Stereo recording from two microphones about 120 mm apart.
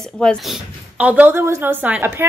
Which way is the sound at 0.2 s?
10° left (ahead or behind).